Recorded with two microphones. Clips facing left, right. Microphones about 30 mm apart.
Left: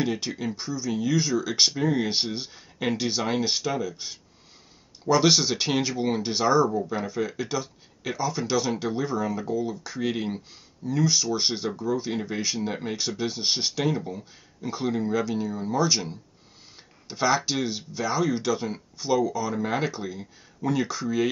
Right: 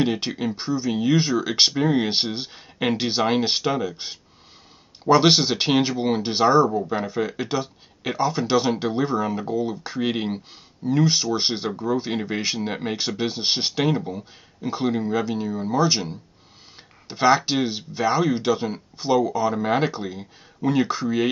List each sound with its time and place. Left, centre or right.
0.0 s speech: right